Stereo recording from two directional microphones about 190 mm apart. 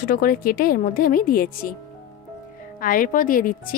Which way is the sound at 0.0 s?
50° left (ahead or behind).